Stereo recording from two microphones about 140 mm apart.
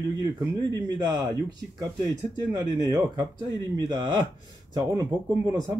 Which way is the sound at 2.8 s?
30° right (ahead or behind).